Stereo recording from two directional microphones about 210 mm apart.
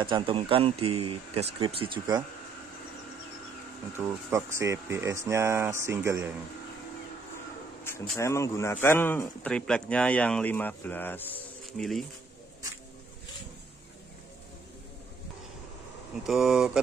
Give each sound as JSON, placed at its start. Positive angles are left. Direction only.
{"t": 0.0, "sound": "speech", "side_deg": -25}
{"t": 4.3, "sound": "speech", "side_deg": -15}
{"t": 7.8, "sound": "speech", "side_deg": 10}
{"t": 16.3, "sound": "speech", "side_deg": 0}